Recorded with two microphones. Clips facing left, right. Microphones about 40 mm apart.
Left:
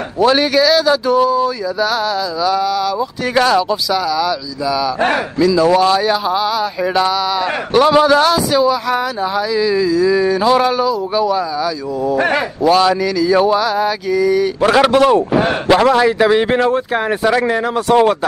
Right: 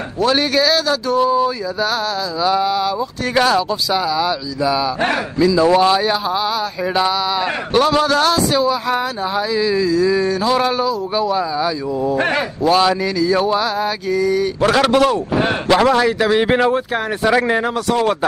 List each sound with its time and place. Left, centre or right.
0.2 s a man's voice: centre
1.3 s a sound: centre
2.4 s speech: right
3.3 s speech: centre
3.9 s a sound: centre
4.6 s speech: centre
5.4 s speech: centre
5.8 s a sound: centre
6.2 s speech: centre
7.8 s speech: centre
10.3 s a man's voice: centre
10.6 s a man's voice: centre
16.3 s speech: centre